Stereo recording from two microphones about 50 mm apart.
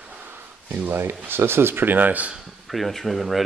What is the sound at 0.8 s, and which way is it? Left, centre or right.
Speech, right.